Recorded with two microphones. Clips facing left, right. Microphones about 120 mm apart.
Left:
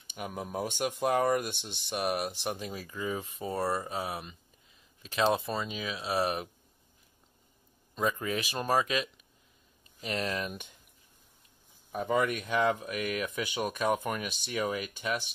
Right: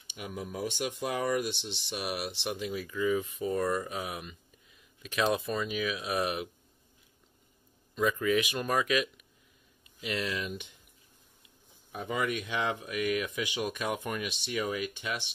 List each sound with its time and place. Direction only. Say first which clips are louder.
0.1 s speech: left 2 dB; 45° left (ahead or behind)
7.9 s speech: right 4 dB; 35° left (ahead or behind)
11.9 s speech: left 4 dB; 40° left (ahead or behind)